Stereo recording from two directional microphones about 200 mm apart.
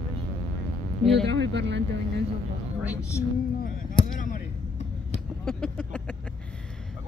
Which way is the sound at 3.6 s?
45° left (ahead or behind).